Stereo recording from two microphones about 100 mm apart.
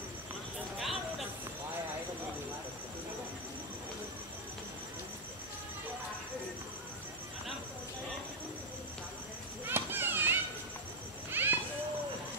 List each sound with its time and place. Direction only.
9.7 s children playing: 20° right (ahead or behind)
11.2 s cat: 20° right (ahead or behind)